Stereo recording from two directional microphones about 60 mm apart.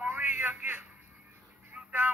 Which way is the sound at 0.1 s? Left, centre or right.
Right.